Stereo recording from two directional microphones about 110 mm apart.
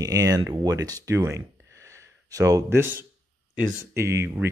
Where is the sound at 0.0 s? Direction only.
30° right (ahead or behind).